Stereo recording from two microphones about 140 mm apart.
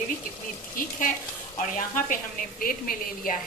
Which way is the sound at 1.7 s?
75° left (ahead or behind).